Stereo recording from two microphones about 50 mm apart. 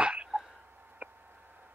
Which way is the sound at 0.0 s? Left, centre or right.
Right.